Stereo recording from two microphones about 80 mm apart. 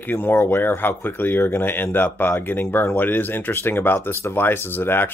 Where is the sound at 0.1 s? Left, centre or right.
Left.